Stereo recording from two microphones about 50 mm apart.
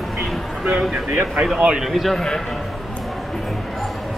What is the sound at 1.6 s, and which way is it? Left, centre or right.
Speech, centre.